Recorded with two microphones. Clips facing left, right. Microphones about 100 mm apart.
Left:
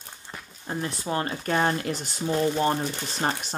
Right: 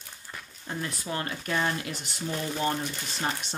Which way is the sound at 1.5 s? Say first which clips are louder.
Left 5 dB; 45° left (ahead or behind).